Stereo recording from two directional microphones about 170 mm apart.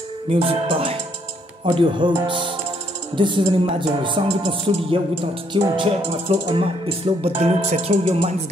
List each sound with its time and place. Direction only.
0.3 s music: 35° right (ahead or behind)
1.7 s speech: 30° right (ahead or behind)
6.0 s music: 30° right (ahead or behind)